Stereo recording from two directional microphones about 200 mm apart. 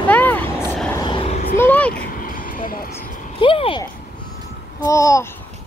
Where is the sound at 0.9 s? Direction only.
25° left (ahead or behind).